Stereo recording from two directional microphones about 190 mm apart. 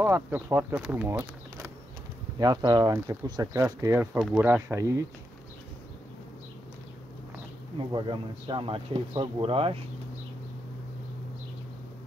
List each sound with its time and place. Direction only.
0.0 s speech: 10° right (ahead or behind)
8.5 s speech: 25° right (ahead or behind)